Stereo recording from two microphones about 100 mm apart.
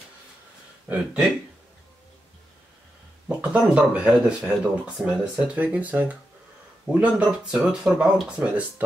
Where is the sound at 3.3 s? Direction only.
10° right (ahead or behind).